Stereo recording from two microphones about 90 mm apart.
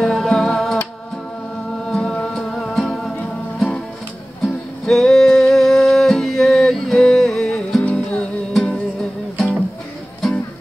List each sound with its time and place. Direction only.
0.0 s music: centre (ahead or behind)
1.9 s music: 5° left (ahead or behind)